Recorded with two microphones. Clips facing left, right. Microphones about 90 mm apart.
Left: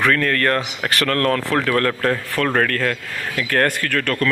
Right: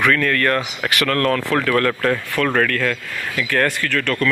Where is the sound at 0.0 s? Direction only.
30° left (ahead or behind).